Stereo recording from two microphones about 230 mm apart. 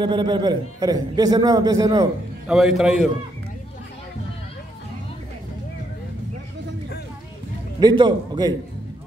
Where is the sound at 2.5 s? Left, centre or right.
Centre.